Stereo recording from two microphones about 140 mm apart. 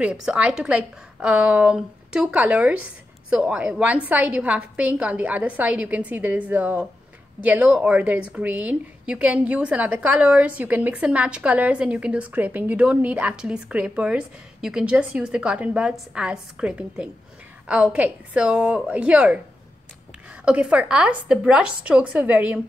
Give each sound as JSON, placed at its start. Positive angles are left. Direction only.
{"t": 0.0, "sound": "a woman's voice", "side_deg": -5}
{"t": 20.4, "sound": "a woman's voice", "side_deg": -10}